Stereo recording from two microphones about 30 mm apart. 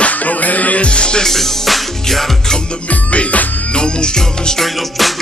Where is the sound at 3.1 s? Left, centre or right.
Left.